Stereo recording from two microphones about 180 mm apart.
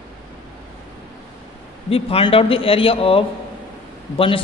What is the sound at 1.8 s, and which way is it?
A man's voice, 30° left (ahead or behind).